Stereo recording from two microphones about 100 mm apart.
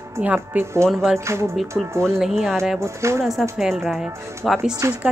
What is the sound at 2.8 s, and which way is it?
Speech, 30° right (ahead or behind).